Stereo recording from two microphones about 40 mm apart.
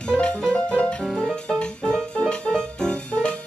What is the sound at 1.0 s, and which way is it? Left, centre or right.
Music, centre.